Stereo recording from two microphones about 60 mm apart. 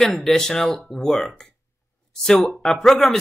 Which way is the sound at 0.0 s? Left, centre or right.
Centre.